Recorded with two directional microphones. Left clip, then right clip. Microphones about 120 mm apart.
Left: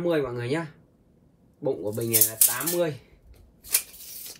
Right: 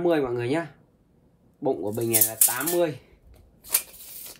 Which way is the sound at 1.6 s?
55° right (ahead or behind).